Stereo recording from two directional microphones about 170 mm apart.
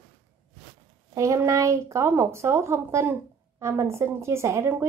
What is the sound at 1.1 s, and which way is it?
A woman's voice, 20° right (ahead or behind).